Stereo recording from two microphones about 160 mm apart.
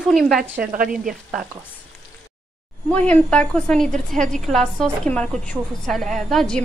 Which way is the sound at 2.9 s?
10° left (ahead or behind).